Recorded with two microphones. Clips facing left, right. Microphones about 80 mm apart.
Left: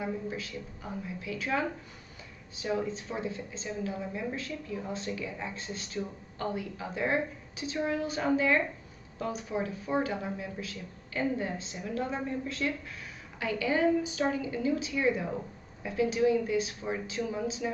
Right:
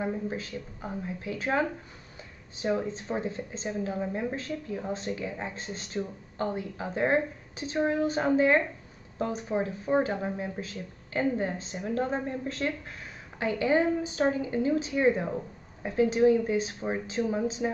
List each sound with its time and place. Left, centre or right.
0.0 s speech: right